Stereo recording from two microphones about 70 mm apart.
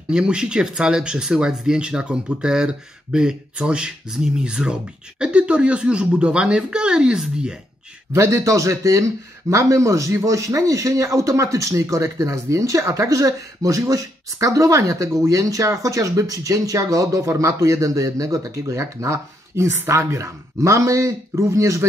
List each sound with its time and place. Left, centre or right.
0.1 s speech: centre
8.1 s speech: right